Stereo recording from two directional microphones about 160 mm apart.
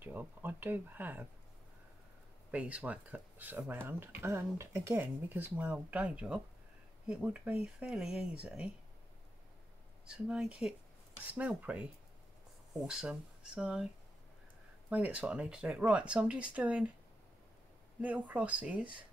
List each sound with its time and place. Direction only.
0.0 s speech: 10° right (ahead or behind)
2.5 s speech: 10° right (ahead or behind)
10.0 s speech: 5° right (ahead or behind)
14.9 s speech: 10° right (ahead or behind)
18.0 s speech: 10° right (ahead or behind)